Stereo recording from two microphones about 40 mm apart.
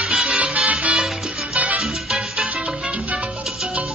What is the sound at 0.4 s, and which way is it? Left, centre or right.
Salsa music, right.